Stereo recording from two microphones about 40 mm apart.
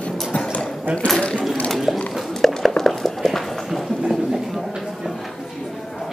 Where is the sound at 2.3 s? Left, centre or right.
Centre.